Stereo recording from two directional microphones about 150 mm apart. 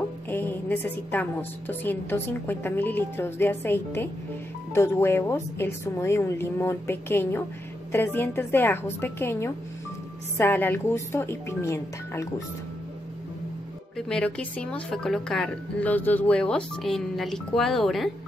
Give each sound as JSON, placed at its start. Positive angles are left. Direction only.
{"t": 0.3, "sound": "a sound", "side_deg": 15}
{"t": 1.7, "sound": "a woman's voice", "side_deg": 15}
{"t": 13.9, "sound": "a woman's voice", "side_deg": 5}